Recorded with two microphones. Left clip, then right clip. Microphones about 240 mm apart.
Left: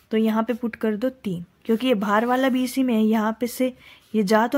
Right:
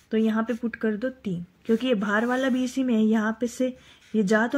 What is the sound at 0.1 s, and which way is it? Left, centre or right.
A woman's voice, left.